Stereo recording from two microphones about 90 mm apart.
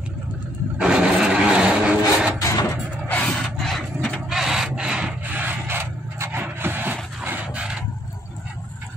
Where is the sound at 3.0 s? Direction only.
15° left (ahead or behind).